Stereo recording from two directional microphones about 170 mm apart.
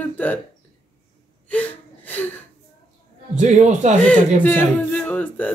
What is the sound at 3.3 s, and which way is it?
Speech, 45° right (ahead or behind).